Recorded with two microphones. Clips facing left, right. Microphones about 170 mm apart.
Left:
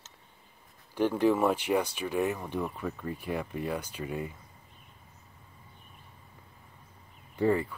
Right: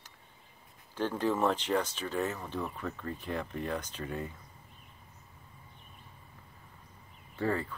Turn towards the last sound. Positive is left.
turn(degrees=15)  # may be behind; listen again after turning